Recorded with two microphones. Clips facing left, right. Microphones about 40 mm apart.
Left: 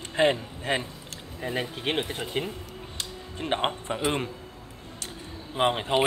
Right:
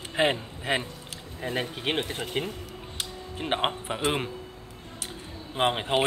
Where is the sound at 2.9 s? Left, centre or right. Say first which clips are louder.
Right 1 dB; centre.